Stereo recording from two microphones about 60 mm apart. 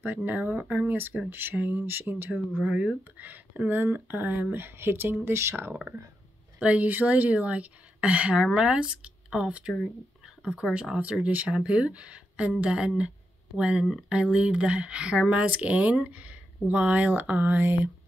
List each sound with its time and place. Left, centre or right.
0.0 s speech: right
2.6 s speech: right
6.6 s speech: right